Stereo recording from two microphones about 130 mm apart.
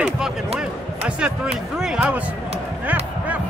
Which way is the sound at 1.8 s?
5° right (ahead or behind).